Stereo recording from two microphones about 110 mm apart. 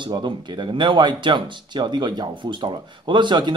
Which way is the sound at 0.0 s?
45° right (ahead or behind).